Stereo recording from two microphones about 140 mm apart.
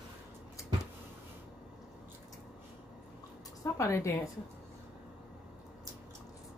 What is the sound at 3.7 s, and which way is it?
Speech, 20° left (ahead or behind).